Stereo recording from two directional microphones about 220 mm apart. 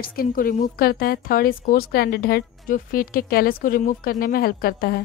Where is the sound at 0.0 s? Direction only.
40° left (ahead or behind).